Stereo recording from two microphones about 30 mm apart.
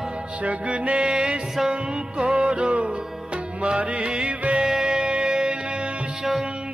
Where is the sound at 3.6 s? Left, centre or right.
Right.